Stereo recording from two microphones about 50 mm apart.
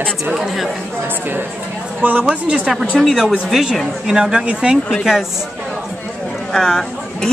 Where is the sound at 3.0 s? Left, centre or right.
Centre.